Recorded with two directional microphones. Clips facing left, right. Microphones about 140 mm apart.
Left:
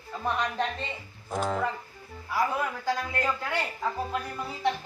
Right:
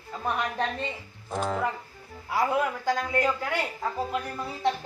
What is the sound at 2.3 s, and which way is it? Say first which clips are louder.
Speech: right 3 dB; 20° right (ahead or behind).